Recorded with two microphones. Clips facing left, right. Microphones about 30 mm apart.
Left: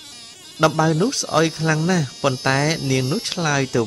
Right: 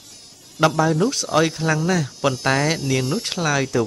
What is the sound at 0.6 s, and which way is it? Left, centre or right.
Speech, centre.